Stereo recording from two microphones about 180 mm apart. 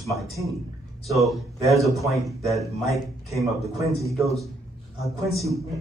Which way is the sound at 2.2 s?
20° right (ahead or behind).